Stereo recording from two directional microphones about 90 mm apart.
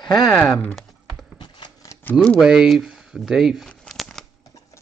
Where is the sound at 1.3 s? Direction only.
60° left (ahead or behind).